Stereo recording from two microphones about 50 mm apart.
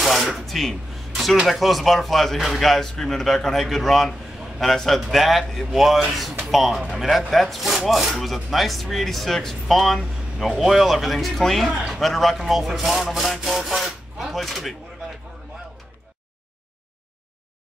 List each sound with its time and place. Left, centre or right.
0.0 s speech: centre